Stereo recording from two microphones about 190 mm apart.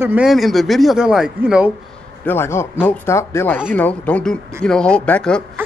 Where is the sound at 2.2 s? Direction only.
15° left (ahead or behind).